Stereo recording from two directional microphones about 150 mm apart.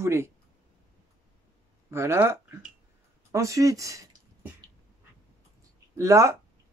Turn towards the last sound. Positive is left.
turn(degrees=-20)  # may be behind; listen again after turning